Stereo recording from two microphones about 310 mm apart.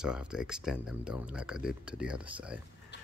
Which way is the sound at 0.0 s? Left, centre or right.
Centre.